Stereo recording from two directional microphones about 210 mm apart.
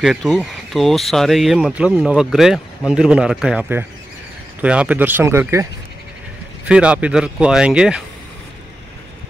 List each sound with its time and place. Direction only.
0.0 s speech: centre (ahead or behind)
6.7 s speech: 5° right (ahead or behind)